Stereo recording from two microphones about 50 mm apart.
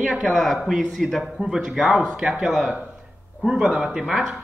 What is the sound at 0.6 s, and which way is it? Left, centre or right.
A man's voice, centre.